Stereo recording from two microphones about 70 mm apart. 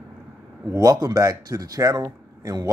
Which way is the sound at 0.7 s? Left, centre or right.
Right.